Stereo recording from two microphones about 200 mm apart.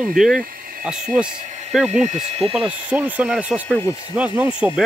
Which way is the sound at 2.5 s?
5° right (ahead or behind).